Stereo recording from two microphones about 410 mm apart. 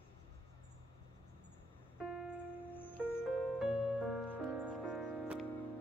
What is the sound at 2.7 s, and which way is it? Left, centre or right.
Music, centre.